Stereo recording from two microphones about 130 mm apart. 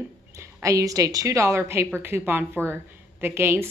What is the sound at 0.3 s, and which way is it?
A woman's voice, 25° right (ahead or behind).